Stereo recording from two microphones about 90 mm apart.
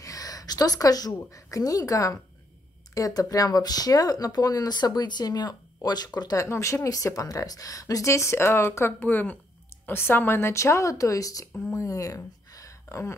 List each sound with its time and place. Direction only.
0.0 s a woman's voice: 40° left (ahead or behind)
6.4 s speech: 35° left (ahead or behind)
11.7 s a sound: 40° left (ahead or behind)